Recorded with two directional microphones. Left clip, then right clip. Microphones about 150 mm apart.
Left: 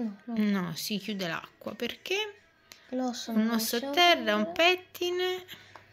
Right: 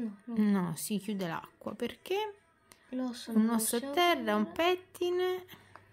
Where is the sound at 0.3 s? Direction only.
30° right (ahead or behind).